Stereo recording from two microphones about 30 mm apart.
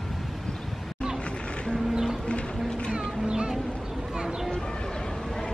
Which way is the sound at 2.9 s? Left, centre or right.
Right.